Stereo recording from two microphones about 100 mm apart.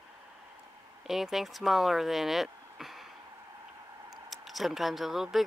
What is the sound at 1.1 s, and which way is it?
Speech, centre (ahead or behind).